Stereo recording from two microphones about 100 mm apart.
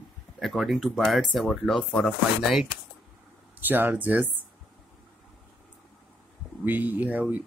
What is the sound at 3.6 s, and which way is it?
Speech, 20° right (ahead or behind).